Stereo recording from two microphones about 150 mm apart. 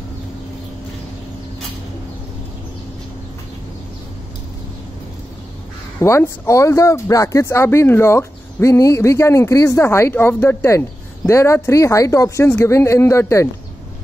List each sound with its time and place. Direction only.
5.9 s speech: 20° left (ahead or behind)